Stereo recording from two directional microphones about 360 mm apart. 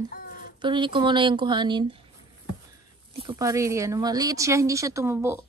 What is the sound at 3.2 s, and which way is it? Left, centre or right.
Speech, centre.